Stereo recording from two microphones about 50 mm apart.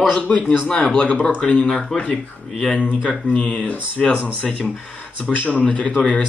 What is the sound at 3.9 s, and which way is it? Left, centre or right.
Speech, centre.